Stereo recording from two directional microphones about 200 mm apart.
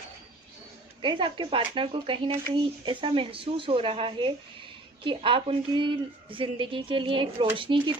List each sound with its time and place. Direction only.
1.0 s a woman's voice: 25° right (ahead or behind)